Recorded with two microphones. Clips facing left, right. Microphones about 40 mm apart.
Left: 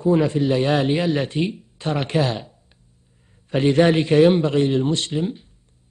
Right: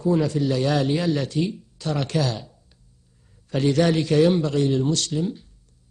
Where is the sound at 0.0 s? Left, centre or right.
Left.